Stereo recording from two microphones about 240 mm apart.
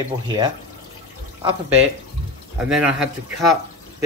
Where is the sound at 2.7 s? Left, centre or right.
Centre.